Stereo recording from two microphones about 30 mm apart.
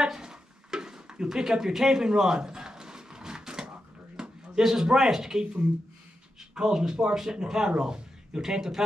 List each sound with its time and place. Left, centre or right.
0.0 s a sound: right
4.2 s speech: right
6.5 s speech: right